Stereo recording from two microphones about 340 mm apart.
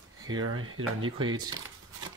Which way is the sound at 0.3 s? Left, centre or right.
Right.